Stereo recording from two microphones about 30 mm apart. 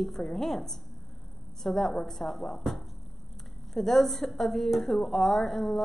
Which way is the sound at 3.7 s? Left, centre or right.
Centre.